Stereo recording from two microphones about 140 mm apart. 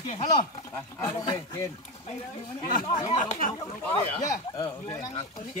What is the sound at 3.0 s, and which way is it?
Speech, 60° left (ahead or behind).